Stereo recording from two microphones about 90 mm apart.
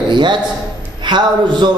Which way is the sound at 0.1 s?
60° right (ahead or behind).